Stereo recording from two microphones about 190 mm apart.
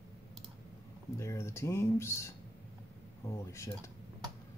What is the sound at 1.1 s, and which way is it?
Speech, 15° left (ahead or behind).